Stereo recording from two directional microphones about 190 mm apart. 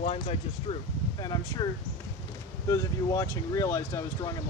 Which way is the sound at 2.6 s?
15° left (ahead or behind).